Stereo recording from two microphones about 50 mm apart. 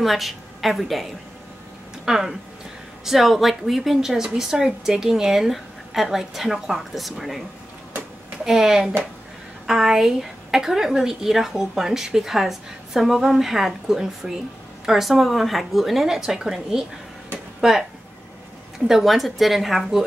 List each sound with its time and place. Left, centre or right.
0.0 s a woman's voice: centre
2.0 s a woman's voice: centre
8.5 s a woman's voice: centre
18.9 s a woman's voice: centre